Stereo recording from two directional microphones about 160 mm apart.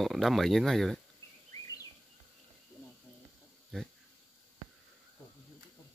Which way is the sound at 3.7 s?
5° left (ahead or behind).